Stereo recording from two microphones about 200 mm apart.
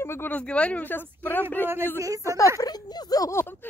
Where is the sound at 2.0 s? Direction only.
15° right (ahead or behind).